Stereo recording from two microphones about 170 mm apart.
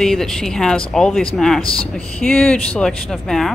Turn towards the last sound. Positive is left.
turn(degrees=0)  # may be behind; listen again after turning